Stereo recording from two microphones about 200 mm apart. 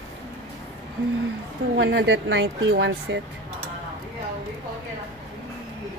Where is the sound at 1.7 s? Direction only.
65° right (ahead or behind).